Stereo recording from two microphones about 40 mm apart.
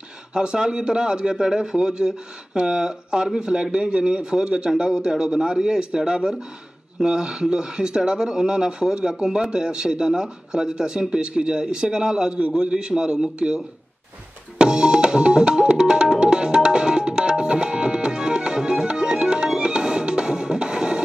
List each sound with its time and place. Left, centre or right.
0.3 s speech: right
14.6 s music: right